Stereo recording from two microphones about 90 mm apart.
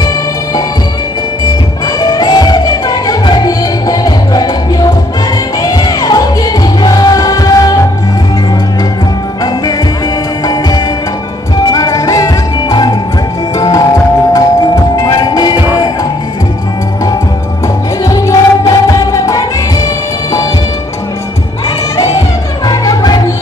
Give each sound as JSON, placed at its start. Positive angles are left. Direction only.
{"t": 2.0, "sound": "music", "side_deg": 45}
{"t": 10.4, "sound": "music", "side_deg": 45}
{"t": 15.0, "sound": "music", "side_deg": 45}
{"t": 18.0, "sound": "music", "side_deg": 40}
{"t": 22.7, "sound": "music", "side_deg": 45}